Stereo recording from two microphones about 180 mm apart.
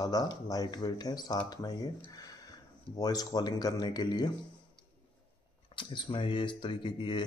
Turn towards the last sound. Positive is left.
turn(degrees=25)  # may be behind; listen again after turning